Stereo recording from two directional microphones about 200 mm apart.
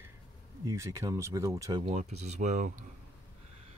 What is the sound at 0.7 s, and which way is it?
Speech, 15° right (ahead or behind).